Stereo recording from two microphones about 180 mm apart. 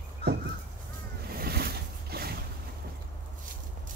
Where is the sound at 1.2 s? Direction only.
60° right (ahead or behind).